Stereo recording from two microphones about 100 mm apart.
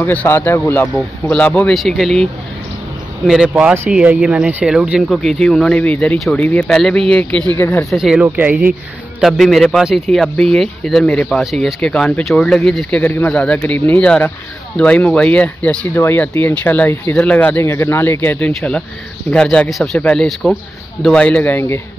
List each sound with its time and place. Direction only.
0.1 s speech: 15° left (ahead or behind)
1.7 s speech: centre (ahead or behind)
3.3 s speech: 5° right (ahead or behind)
5.0 s speech: centre (ahead or behind)
7.5 s speech: 25° left (ahead or behind)
7.9 s speech: 5° right (ahead or behind)
8.4 s speech: 15° right (ahead or behind)
9.2 s speech: centre (ahead or behind)
13.0 s speech: 15° left (ahead or behind)
18.4 s speech: 5° left (ahead or behind)
21.5 s speech: 25° left (ahead or behind)